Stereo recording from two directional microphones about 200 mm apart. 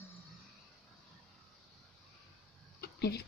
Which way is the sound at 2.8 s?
55° left (ahead or behind).